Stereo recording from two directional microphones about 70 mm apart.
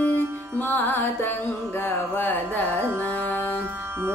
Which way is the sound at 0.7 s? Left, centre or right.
Left.